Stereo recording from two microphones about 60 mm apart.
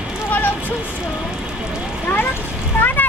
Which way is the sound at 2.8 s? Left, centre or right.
Left.